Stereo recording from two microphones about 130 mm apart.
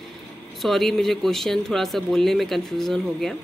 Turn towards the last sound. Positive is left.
turn(degrees=5)  # may be behind; listen again after turning